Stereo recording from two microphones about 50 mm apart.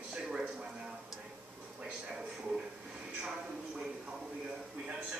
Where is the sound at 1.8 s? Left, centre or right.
Centre.